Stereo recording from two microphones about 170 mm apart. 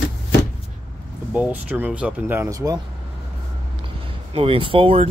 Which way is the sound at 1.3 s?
10° right (ahead or behind).